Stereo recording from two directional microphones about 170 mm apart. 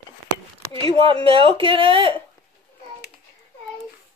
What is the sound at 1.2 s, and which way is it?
Speech, 30° right (ahead or behind).